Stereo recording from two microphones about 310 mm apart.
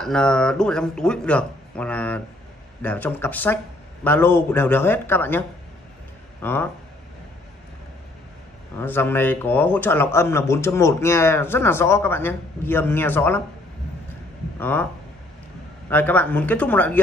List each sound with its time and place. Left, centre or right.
0.0 s speech: centre
6.4 s speech: centre
8.7 s speech: centre
14.6 s speech: centre
15.9 s speech: centre